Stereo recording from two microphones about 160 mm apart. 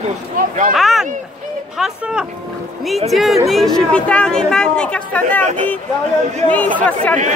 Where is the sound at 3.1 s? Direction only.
Centre (ahead or behind).